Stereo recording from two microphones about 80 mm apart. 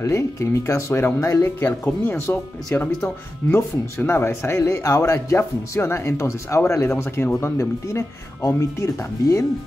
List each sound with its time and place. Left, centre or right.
0.0 s speech: left